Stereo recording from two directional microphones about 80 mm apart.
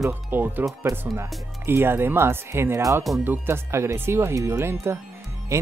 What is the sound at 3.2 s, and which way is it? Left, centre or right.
Speech, right.